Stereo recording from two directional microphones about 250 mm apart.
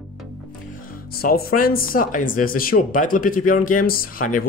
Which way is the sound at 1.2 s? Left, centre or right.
Left.